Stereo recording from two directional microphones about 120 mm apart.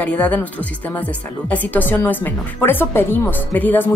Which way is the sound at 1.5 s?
15° left (ahead or behind).